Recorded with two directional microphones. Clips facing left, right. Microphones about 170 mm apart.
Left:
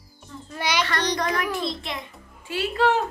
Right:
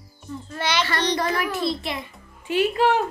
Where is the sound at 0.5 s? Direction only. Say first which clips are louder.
Right 1 dB; 10° left (ahead or behind).